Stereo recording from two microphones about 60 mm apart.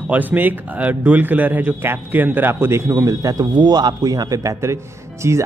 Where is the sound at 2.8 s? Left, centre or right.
Right.